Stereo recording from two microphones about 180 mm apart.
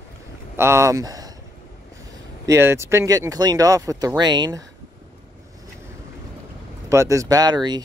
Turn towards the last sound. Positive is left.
turn(degrees=-25)  # may be behind; listen again after turning